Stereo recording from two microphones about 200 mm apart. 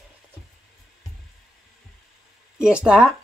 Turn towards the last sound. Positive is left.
turn(degrees=-5)  # may be behind; listen again after turning